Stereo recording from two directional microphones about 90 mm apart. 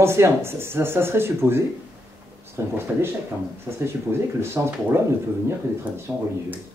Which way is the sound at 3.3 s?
20° right (ahead or behind).